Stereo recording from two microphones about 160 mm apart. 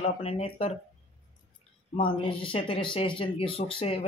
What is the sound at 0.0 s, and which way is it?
Speech, 40° left (ahead or behind).